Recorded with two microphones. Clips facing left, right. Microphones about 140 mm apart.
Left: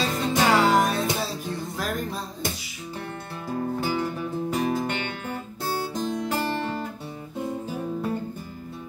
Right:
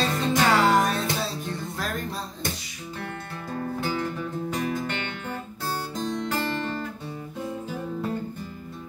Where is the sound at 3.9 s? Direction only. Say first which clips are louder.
Left 2 dB; 10° left (ahead or behind).